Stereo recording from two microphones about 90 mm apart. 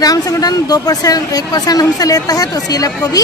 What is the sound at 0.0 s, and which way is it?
A woman's voice, 45° left (ahead or behind).